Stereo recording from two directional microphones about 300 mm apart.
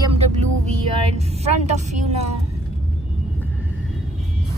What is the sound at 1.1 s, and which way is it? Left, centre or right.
Vehicle, right.